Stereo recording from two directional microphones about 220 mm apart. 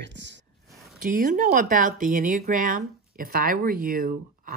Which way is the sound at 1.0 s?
35° right (ahead or behind).